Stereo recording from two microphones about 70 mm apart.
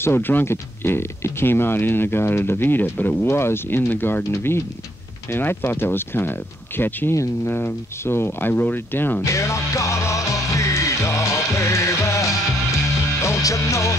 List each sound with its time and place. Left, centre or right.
0.0 s speech: left
9.2 s music: left